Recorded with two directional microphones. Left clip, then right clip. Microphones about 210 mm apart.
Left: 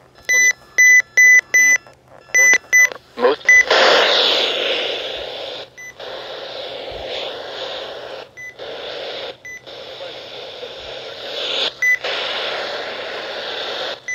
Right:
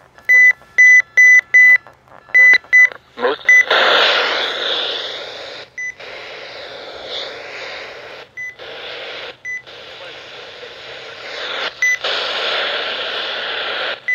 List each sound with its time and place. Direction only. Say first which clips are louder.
0.3 s beep: right 5 dB; 20° left (ahead or behind)
2.3 s beep: right 3 dB; 30° left (ahead or behind)
4.3 s a sound: left 1 dB; 40° left (ahead or behind)
11.6 s beep: right 2 dB; 25° left (ahead or behind)
11.9 s radio: right 1 dB; 10° left (ahead or behind)